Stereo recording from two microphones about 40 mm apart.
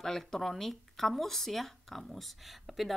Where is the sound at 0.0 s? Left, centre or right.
Centre.